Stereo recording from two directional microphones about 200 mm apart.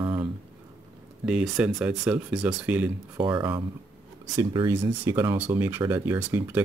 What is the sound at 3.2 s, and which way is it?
Speech, 25° right (ahead or behind).